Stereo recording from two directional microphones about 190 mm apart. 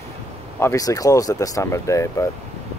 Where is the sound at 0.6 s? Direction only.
15° left (ahead or behind).